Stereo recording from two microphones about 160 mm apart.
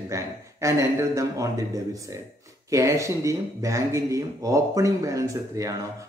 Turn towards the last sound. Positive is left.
turn(degrees=-20)  # may be behind; listen again after turning